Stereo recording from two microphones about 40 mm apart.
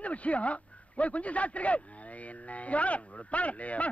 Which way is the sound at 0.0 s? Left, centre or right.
Left.